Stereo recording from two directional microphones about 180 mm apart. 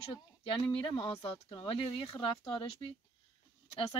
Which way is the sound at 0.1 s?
30° left (ahead or behind).